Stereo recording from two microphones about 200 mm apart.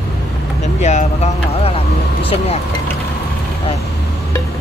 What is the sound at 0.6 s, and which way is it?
Vehicle, 35° left (ahead or behind).